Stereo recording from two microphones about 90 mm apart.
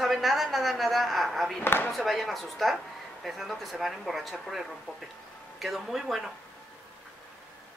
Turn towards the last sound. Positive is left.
turn(degrees=-5)  # may be behind; listen again after turning